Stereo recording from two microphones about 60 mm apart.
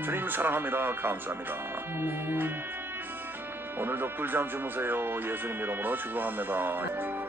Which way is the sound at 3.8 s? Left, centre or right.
Right.